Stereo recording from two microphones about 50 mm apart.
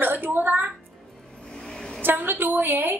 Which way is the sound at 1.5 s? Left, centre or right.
Centre.